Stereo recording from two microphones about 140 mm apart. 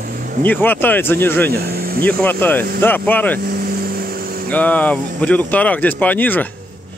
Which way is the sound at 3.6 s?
90° right.